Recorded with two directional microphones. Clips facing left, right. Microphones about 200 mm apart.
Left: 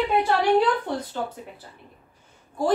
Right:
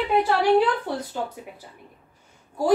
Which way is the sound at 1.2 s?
10° right (ahead or behind).